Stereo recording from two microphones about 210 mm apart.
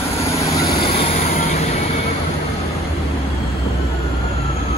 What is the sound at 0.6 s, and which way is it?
Vehicle, 25° left (ahead or behind).